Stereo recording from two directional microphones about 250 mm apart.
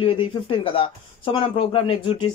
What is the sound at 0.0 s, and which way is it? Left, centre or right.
Speech, left.